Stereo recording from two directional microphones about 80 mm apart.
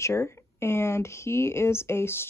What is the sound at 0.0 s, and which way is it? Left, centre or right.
Speech, left.